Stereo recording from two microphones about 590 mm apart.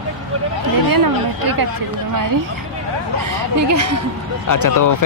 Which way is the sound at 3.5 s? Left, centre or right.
Right.